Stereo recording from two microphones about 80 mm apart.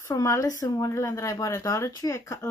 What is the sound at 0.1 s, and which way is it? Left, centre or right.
Speech, left.